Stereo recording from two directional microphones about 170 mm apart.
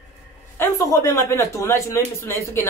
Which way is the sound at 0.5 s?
20° left (ahead or behind).